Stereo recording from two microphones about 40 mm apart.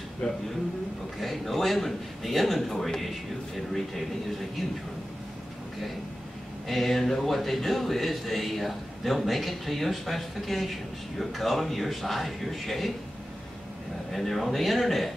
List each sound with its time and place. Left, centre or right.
0.2 s speech: left
1.2 s speech: centre
6.7 s speech: centre
14.1 s speech: centre